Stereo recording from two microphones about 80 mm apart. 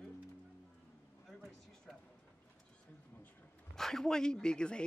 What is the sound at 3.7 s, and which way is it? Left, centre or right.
Speech, centre.